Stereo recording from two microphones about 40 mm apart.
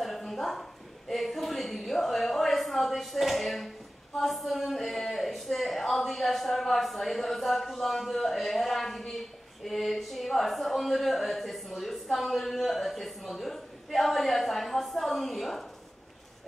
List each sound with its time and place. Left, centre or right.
0.0 s a woman's voice: centre